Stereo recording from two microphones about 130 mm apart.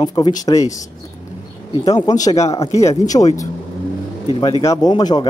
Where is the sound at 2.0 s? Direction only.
30° left (ahead or behind).